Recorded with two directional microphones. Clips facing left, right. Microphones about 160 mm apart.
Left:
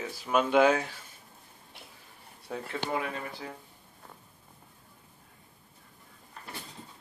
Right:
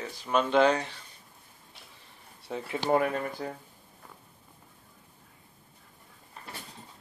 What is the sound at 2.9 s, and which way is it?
Speech, 45° right (ahead or behind).